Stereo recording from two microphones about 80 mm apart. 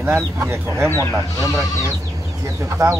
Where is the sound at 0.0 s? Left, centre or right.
Right.